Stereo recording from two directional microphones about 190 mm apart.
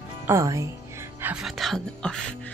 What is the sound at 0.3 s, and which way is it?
Speech, 15° right (ahead or behind).